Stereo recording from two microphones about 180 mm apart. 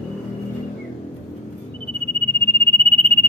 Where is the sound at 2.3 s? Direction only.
30° right (ahead or behind).